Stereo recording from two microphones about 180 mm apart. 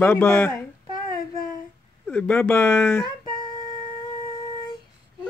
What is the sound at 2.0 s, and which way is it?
A woman's voice, 5° left (ahead or behind).